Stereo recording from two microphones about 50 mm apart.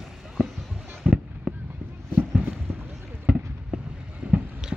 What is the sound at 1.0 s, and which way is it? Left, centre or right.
Fireworks, centre.